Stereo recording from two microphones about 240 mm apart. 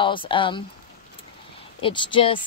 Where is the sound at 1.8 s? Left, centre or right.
Centre.